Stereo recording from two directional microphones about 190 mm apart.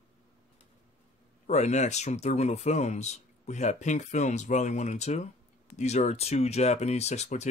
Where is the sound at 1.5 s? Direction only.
35° left (ahead or behind).